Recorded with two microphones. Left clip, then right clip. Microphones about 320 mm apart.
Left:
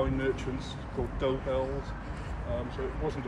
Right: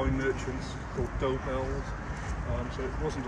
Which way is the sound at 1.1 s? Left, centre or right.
Left.